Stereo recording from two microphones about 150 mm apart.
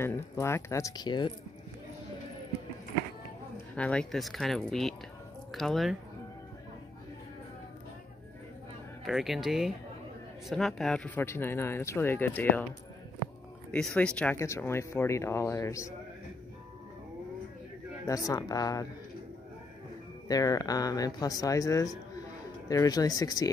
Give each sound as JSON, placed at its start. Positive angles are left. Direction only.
{"t": 0.0, "sound": "speech", "side_deg": 15}
{"t": 3.7, "sound": "speech", "side_deg": 5}
{"t": 9.0, "sound": "speech", "side_deg": 0}
{"t": 13.7, "sound": "speech", "side_deg": 5}
{"t": 14.3, "sound": "speech", "side_deg": 20}
{"t": 18.3, "sound": "speech", "side_deg": 25}
{"t": 20.2, "sound": "speech", "side_deg": 25}